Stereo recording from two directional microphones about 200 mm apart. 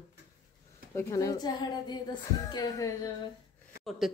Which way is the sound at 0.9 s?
15° left (ahead or behind).